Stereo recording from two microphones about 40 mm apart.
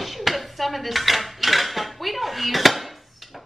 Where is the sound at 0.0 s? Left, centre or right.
Centre.